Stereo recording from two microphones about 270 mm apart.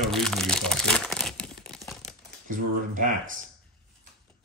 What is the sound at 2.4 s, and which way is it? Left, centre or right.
Speech, right.